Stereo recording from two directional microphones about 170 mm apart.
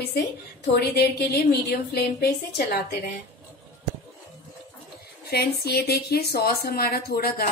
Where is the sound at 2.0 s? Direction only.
70° left (ahead or behind).